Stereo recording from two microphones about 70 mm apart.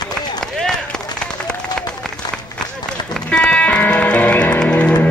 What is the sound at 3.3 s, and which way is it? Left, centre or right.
Music, centre.